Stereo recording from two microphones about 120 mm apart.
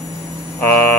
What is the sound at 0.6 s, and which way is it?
Mains hum, 15° left (ahead or behind).